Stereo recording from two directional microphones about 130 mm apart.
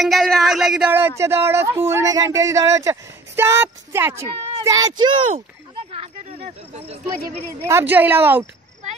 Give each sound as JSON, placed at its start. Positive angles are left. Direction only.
{"t": 0.0, "sound": "speech", "side_deg": 0}
{"t": 0.9, "sound": "speech", "side_deg": -20}
{"t": 4.4, "sound": "child singing", "side_deg": -45}
{"t": 4.6, "sound": "speech", "side_deg": -25}
{"t": 5.9, "sound": "speech", "side_deg": -50}
{"t": 7.6, "sound": "a woman's voice", "side_deg": -15}